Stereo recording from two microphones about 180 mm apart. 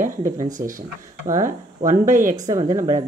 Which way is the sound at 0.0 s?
45° right (ahead or behind).